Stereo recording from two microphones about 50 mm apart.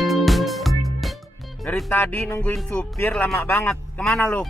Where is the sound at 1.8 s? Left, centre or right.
Left.